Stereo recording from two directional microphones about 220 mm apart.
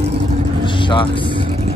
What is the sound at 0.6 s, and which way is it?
Vehicle, 20° left (ahead or behind).